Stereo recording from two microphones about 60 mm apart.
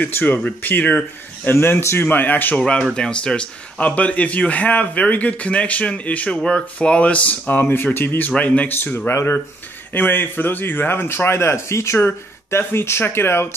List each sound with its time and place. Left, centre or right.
0.0 s speech: left
1.5 s speech: left
2.0 s speech: left
2.6 s speech: centre; by 8.3 s left
8.3 s speech: left
8.7 s speech: left
9.9 s speech: left